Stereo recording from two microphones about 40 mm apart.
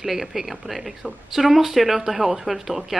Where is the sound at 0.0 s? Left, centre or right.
Centre.